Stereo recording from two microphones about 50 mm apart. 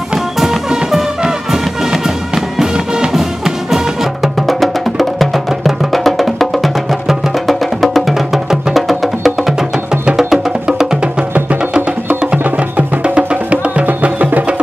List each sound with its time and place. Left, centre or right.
0.4 s music: centre
12.4 s music: right